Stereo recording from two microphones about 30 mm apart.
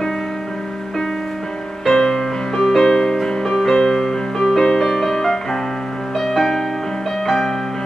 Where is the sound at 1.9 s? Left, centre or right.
Centre.